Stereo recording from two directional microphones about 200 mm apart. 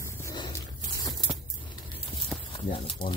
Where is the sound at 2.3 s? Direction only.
5° left (ahead or behind).